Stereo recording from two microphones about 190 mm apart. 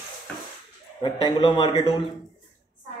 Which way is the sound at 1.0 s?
25° left (ahead or behind).